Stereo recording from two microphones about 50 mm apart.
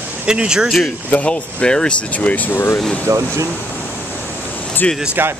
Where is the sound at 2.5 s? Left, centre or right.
Left.